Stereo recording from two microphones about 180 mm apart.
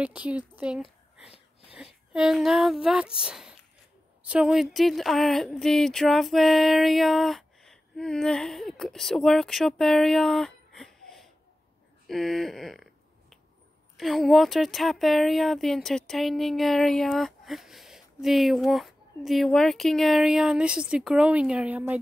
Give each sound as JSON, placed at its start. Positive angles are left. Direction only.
{"t": 0.0, "sound": "speech", "side_deg": -5}
{"t": 0.6, "sound": "a sound", "side_deg": -5}
{"t": 1.7, "sound": "speech", "side_deg": -5}
{"t": 13.9, "sound": "speech", "side_deg": 0}